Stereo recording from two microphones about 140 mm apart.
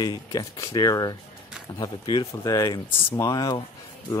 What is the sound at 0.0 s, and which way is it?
Speech, 30° left (ahead or behind).